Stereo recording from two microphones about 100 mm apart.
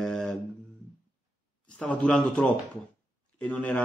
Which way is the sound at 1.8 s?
10° left (ahead or behind).